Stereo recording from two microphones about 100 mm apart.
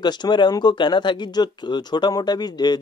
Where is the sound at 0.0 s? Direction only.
45° left (ahead or behind).